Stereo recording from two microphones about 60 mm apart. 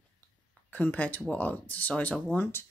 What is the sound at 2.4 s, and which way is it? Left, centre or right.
Speech, left.